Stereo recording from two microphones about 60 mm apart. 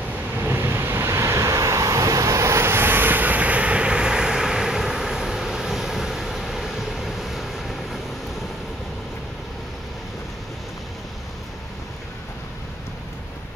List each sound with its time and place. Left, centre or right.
0.4 s vehicle: right; by 8.0 s centre